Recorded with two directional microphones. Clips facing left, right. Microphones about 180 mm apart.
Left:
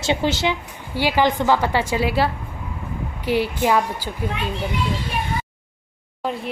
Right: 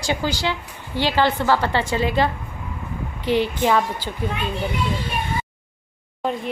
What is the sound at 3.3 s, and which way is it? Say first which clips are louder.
Speech: even; 10° left (ahead or behind).